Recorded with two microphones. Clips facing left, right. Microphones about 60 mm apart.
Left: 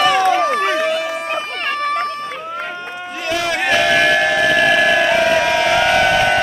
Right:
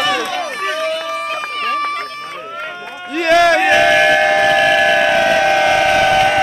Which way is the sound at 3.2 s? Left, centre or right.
Right.